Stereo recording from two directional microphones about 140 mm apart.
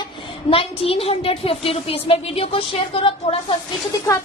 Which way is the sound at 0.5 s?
40° left (ahead or behind).